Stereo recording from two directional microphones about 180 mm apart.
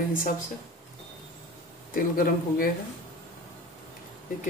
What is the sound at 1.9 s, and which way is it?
Speech, 50° left (ahead or behind).